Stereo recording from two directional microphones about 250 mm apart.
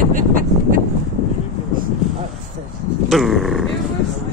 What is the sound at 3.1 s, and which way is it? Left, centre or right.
Grunt, centre.